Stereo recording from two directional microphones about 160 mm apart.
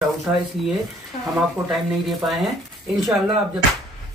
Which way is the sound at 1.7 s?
Centre (ahead or behind).